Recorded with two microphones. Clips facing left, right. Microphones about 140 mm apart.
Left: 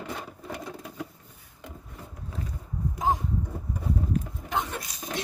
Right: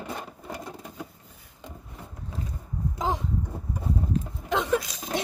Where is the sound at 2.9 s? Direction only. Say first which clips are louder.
Left 2 dB; 90° right.